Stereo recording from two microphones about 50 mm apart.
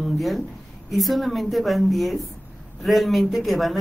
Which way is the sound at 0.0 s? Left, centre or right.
Centre.